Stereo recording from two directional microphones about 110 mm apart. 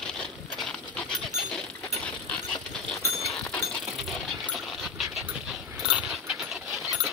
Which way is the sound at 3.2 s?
Centre (ahead or behind).